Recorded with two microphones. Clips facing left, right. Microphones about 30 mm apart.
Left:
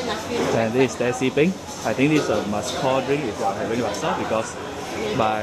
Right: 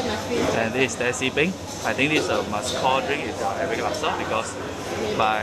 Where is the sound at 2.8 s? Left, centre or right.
Right.